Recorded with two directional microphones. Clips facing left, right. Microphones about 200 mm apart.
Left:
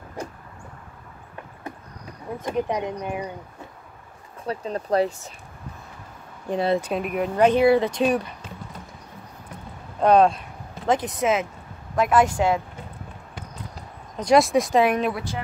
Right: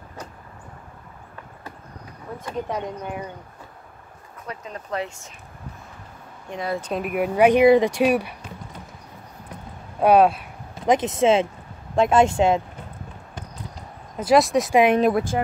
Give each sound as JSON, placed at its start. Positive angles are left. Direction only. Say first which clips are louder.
{"t": 2.3, "sound": "speech", "louder": "left 3 dB", "side_deg": 15}
{"t": 4.5, "sound": "speech", "louder": "left 7 dB", "side_deg": 35}
{"t": 6.5, "sound": "speech", "louder": "left 6 dB", "side_deg": 30}
{"t": 6.8, "sound": "speech", "louder": "right 1 dB", "side_deg": 0}
{"t": 9.9, "sound": "speech", "louder": "right 1 dB", "side_deg": -10}
{"t": 10.9, "sound": "speech", "louder": "right 4 dB", "side_deg": -25}
{"t": 14.1, "sound": "speech", "louder": "even", "side_deg": -5}
{"t": 14.7, "sound": "speech", "louder": "right 2 dB", "side_deg": -15}
{"t": 15.0, "sound": "speech", "louder": "right 6 dB", "side_deg": -45}